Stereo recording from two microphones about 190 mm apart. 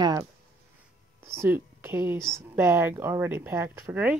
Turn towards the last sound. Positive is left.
turn(degrees=-10)  # may be behind; listen again after turning